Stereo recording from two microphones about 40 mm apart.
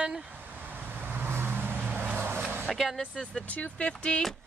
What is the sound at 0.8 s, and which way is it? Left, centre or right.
Vehicle, right.